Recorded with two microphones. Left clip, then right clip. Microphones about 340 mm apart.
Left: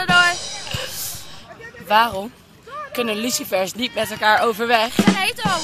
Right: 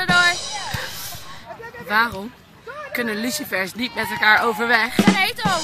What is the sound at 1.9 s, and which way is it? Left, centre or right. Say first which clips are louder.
Speech: left 3 dB; centre.